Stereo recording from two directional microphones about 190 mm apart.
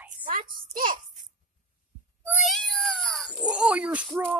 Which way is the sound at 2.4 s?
Centre (ahead or behind).